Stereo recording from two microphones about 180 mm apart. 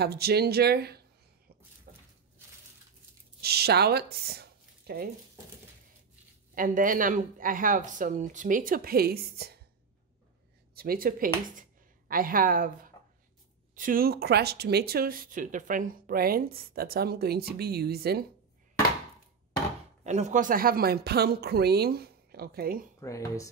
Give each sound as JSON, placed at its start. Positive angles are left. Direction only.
{"t": 0.0, "sound": "speech", "side_deg": -60}
{"t": 1.9, "sound": "a sound", "side_deg": -55}
{"t": 3.3, "sound": "speech", "side_deg": -60}
{"t": 6.5, "sound": "speech", "side_deg": -50}
{"t": 10.7, "sound": "speech", "side_deg": -55}
{"t": 20.0, "sound": "speech", "side_deg": -40}
{"t": 22.9, "sound": "speech", "side_deg": 20}